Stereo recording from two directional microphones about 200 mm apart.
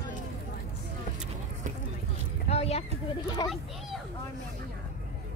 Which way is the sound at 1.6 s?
40° right (ahead or behind).